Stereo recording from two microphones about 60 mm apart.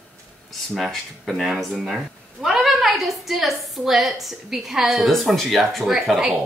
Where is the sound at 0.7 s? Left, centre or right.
Centre.